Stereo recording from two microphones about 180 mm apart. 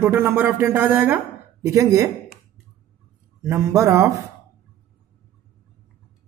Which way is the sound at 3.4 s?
15° right (ahead or behind).